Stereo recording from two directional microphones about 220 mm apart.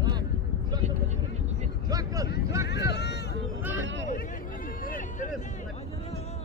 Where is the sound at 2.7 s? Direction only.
50° left (ahead or behind).